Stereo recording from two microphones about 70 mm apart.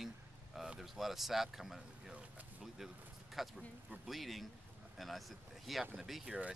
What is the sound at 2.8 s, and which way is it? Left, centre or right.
Speech, centre.